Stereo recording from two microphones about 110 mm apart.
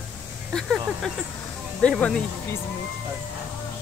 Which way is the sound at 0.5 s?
5° left (ahead or behind).